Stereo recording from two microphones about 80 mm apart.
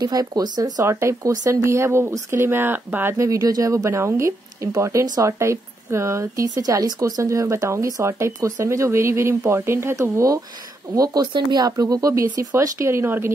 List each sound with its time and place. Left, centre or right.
0.0 s speech: right
0.8 s a woman's voice: right
3.2 s a woman's voice: right
11.2 s a woman's voice: right